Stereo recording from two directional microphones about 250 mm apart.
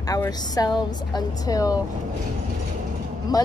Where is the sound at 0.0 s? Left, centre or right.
Centre.